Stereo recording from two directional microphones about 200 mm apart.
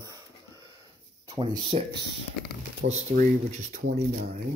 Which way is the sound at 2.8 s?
60° right (ahead or behind).